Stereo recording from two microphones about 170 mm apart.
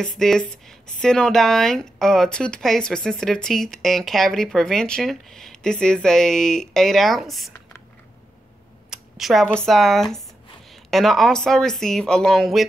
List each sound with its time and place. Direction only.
0.0 s speech: centre (ahead or behind)
8.9 s speech: centre (ahead or behind)